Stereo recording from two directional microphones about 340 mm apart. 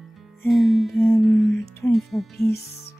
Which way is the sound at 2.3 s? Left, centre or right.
Left.